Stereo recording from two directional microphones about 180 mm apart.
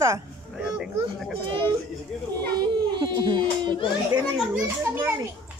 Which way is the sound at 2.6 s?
25° right (ahead or behind).